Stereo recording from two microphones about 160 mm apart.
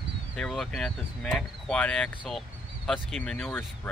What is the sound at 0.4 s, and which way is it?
Speech, 5° left (ahead or behind).